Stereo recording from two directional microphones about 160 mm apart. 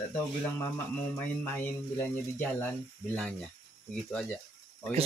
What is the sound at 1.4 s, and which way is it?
Speech, 10° left (ahead or behind).